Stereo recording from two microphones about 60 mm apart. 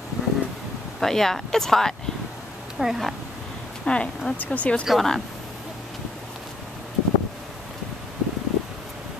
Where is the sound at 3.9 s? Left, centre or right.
Centre.